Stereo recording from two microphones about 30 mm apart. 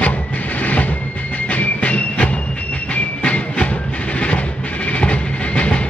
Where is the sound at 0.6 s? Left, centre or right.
Left.